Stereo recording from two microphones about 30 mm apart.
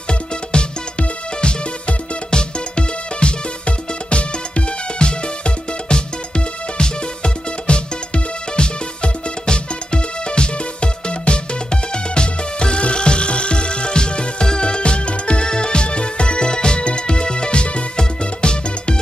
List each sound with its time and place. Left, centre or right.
0.1 s music: left